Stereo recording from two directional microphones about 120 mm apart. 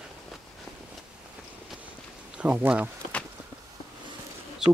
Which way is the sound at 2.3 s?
10° right (ahead or behind).